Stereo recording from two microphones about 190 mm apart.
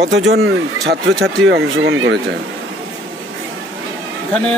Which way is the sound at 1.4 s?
75° right (ahead or behind).